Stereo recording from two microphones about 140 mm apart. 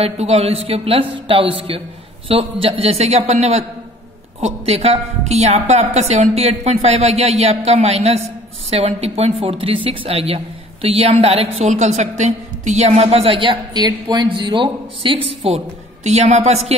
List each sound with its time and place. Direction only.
0.0 s speech: 50° right (ahead or behind)
15.2 s speech: 50° right (ahead or behind)